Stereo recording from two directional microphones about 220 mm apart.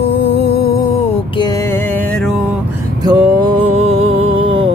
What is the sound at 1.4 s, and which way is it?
Music, 15° left (ahead or behind).